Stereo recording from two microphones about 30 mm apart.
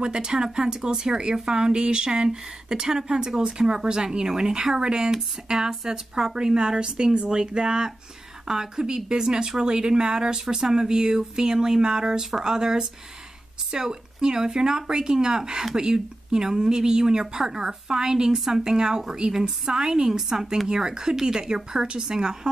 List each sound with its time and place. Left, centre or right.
0.0 s speech: right
2.0 s speech: right